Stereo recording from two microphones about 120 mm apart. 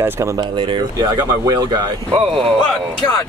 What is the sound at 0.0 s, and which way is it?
Speech, 25° right (ahead or behind).